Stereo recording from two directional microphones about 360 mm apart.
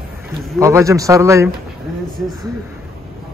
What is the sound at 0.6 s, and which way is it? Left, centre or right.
Speech, centre.